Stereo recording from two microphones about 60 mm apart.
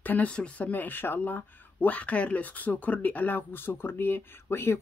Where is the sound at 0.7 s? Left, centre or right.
Left.